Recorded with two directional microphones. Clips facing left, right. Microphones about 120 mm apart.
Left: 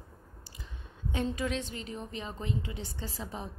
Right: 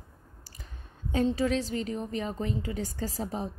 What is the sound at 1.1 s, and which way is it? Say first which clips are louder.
A woman's voice: right 6 dB; 35° right (ahead or behind).